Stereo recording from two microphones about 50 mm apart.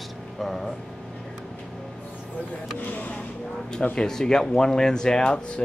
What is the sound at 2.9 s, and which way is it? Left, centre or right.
Speech, left.